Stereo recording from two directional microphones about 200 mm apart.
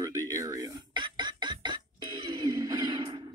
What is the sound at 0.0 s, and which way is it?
Music, 15° right (ahead or behind).